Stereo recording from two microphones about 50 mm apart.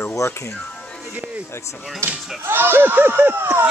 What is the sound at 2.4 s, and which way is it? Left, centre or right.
Speech, right.